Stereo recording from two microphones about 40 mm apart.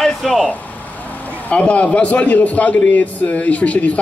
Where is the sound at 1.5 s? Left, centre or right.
Left.